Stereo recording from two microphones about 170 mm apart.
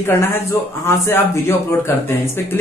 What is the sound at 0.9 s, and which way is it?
Speech, 15° left (ahead or behind).